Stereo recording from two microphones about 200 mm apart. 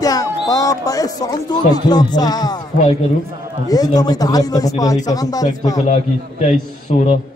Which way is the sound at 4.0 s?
20° left (ahead or behind).